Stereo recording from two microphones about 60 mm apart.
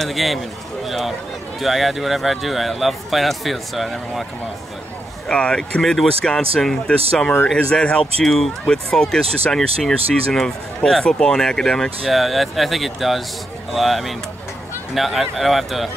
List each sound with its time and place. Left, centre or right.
0.0 s speech: centre
5.3 s speech: centre
5.8 s speech: centre
8.2 s speech: centre
12.1 s speech: centre